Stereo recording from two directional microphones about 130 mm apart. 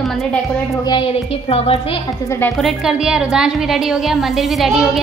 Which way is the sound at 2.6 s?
5° right (ahead or behind).